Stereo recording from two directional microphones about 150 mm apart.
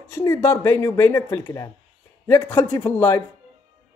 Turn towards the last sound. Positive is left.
turn(degrees=15)  # may be behind; listen again after turning